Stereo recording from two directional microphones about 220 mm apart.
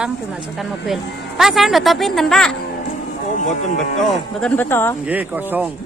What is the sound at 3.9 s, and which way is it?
Speech, 5° left (ahead or behind).